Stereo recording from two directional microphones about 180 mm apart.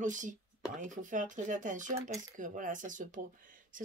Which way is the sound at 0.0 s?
45° right (ahead or behind).